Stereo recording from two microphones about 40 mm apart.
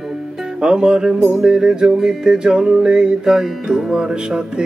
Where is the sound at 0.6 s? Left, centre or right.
Right.